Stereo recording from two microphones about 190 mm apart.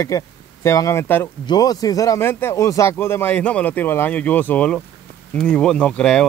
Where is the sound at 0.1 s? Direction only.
20° left (ahead or behind).